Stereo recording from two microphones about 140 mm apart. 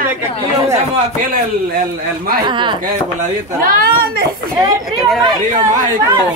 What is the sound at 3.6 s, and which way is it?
Speech, 80° right.